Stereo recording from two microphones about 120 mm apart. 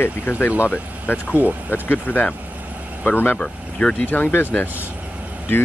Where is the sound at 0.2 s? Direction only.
15° left (ahead or behind).